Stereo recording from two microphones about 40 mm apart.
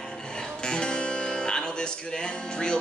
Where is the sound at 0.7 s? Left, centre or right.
Left.